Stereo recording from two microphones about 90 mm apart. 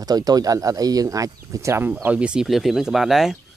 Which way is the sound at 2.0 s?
15° right (ahead or behind).